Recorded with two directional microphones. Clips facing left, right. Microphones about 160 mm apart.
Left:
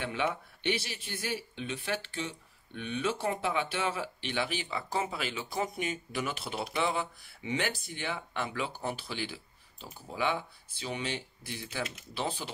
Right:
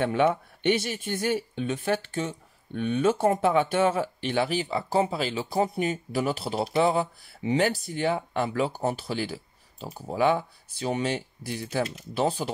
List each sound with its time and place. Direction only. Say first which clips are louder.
0.0 s speech: right 10 dB; 45° right (ahead or behind)